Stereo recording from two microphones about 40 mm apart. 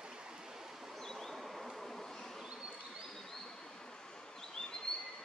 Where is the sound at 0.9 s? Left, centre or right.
Centre.